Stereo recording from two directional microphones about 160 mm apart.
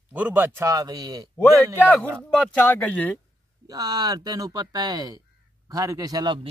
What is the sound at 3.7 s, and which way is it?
Speech, 25° right (ahead or behind).